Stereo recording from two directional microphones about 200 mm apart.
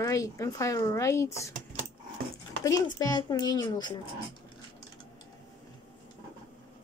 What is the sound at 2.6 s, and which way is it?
A child's voice, 20° left (ahead or behind).